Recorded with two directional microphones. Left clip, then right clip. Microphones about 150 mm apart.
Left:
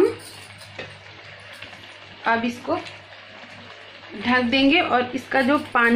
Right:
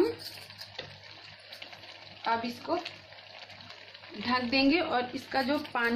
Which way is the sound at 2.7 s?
30° left (ahead or behind).